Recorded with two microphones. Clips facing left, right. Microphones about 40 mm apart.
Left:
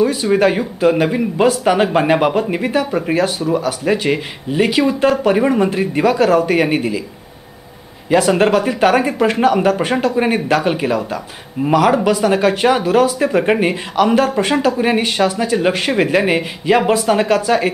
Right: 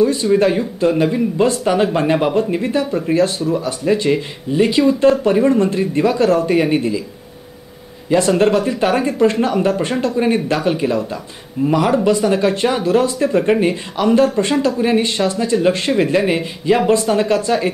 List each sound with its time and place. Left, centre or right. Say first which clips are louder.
0.0 s speech: even; centre
4.7 s speech: right 3 dB; centre
8.1 s speech: left 1 dB; centre